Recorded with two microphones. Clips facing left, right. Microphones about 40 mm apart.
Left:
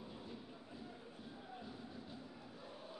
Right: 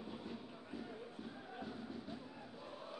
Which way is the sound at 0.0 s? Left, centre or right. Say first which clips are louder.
Right 3 dB; centre.